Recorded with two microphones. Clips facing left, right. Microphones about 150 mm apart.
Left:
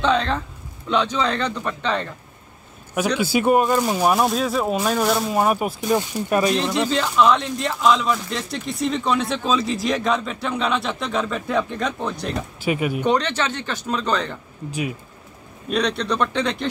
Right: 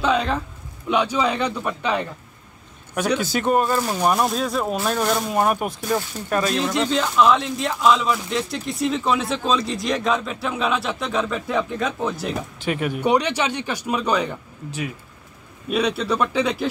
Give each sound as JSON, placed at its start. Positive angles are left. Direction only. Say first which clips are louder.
{"t": 0.0, "sound": "a sound", "louder": "left 1 dB", "side_deg": -10}
{"t": 0.8, "sound": "speech", "louder": "right 1 dB", "side_deg": -10}
{"t": 3.2, "sound": "speech", "louder": "left 5 dB", "side_deg": 10}
{"t": 5.9, "sound": "speech", "louder": "left 4 dB", "side_deg": 15}
{"t": 6.5, "sound": "speech", "louder": "even", "side_deg": 0}
{"t": 12.5, "sound": "speech", "louder": "left 4 dB", "side_deg": 10}
{"t": 13.0, "sound": "speech", "louder": "right 3 dB", "side_deg": -10}
{"t": 14.7, "sound": "speech", "louder": "left 3 dB", "side_deg": 15}
{"t": 15.7, "sound": "speech", "louder": "right 1 dB", "side_deg": -5}